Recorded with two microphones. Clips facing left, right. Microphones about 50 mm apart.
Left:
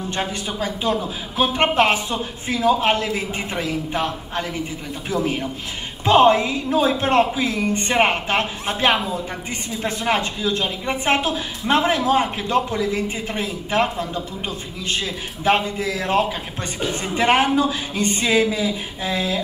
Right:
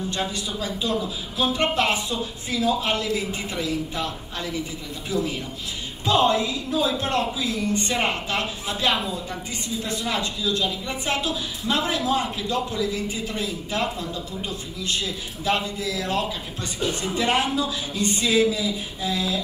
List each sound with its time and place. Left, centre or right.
0.1 s a woman's voice: left